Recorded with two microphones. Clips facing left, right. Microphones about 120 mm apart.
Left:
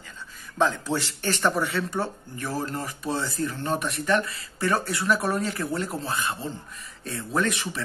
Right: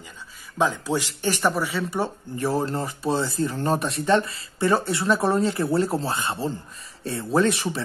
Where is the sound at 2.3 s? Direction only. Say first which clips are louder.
Right 7 dB; 30° right (ahead or behind).